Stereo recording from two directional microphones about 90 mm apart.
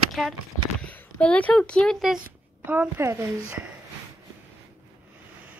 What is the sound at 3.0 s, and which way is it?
Speech, 30° right (ahead or behind).